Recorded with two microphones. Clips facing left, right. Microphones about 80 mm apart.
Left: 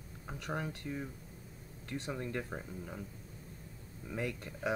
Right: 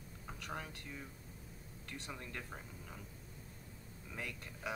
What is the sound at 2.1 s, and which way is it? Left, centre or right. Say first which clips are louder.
Speech: left 9 dB; left.